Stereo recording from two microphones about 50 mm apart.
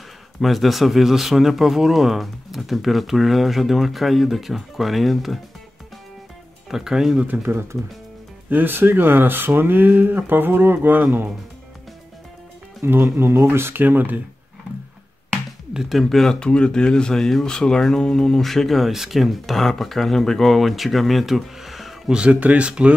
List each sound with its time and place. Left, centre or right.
0.4 s speech: centre
6.7 s speech: centre
8.5 s speech: right
12.8 s speech: right
15.7 s speech: centre
16.3 s speech: centre
22.1 s speech: right